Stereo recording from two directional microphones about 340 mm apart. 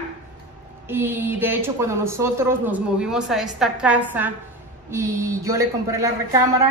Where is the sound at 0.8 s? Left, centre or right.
Centre.